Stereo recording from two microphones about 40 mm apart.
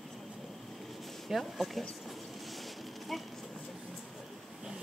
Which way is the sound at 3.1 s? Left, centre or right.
Centre.